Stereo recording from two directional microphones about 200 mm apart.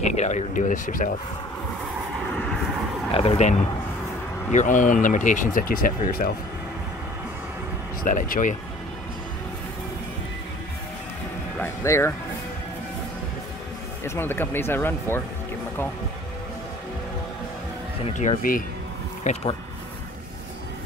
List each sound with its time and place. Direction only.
0.0 s speech: 35° left (ahead or behind)
2.3 s vehicle: 5° left (ahead or behind)
3.2 s speech: 30° left (ahead or behind)
8.0 s speech: 45° left (ahead or behind)
11.5 s speech: 10° left (ahead or behind)
14.0 s speech: 10° left (ahead or behind)
18.0 s speech: 35° left (ahead or behind)